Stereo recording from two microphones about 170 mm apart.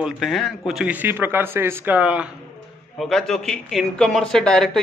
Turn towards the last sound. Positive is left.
turn(degrees=5)  # may be behind; listen again after turning